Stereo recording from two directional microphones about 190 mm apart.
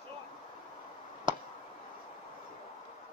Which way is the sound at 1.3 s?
25° right (ahead or behind).